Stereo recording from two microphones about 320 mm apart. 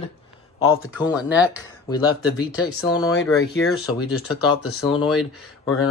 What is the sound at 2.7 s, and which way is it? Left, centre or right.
Speech, left.